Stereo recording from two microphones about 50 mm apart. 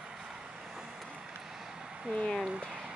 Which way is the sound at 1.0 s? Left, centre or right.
Right.